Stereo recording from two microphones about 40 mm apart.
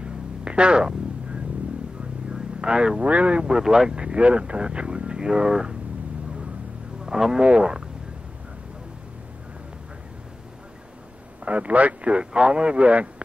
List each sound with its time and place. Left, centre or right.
0.0 s a sound: right
2.6 s speech: right
3.6 s speech: centre
3.9 s speech: right
7.1 s speech: centre
7.4 s speech: right
11.4 s speech: right